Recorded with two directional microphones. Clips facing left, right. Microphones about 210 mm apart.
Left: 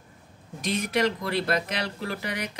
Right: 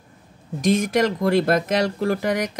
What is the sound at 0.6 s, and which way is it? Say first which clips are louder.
Speech: right 7 dB; 45° right (ahead or behind).